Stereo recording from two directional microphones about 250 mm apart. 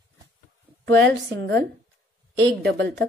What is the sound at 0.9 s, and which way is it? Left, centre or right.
A woman's voice, right.